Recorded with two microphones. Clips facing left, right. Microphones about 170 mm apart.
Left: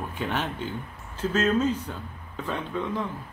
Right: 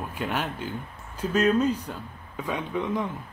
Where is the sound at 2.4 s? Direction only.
15° right (ahead or behind).